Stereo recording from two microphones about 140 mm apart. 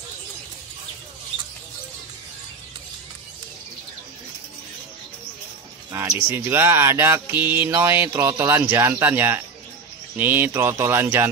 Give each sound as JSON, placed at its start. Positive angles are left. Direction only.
{"t": 5.9, "sound": "speech", "side_deg": -15}